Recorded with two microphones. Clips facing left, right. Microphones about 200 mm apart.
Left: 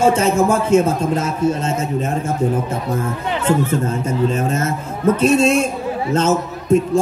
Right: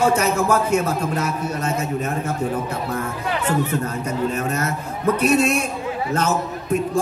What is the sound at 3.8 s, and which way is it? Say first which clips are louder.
Speech: left 4 dB; 25° left (ahead or behind).